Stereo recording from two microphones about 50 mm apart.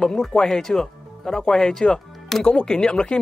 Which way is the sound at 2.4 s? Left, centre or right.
Left.